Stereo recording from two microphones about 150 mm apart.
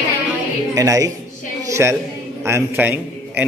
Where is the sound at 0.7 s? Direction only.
25° right (ahead or behind).